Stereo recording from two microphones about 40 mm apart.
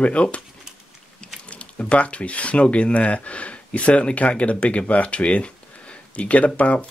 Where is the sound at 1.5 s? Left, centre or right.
Left.